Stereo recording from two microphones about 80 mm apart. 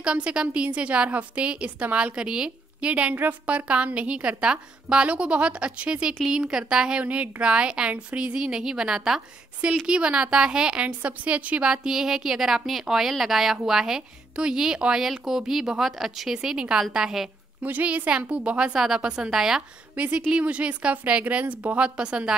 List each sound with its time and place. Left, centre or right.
0.0 s a woman's voice: centre
17.6 s a woman's voice: centre
20.0 s a woman's voice: centre